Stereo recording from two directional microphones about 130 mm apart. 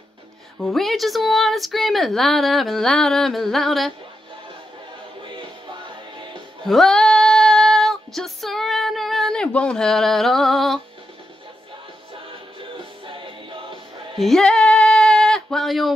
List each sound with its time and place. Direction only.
0.6 s speech: centre (ahead or behind)
5.2 s music: 40° right (ahead or behind)
6.6 s female singing: centre (ahead or behind)
12.5 s music: 40° right (ahead or behind)
14.1 s female singing: centre (ahead or behind)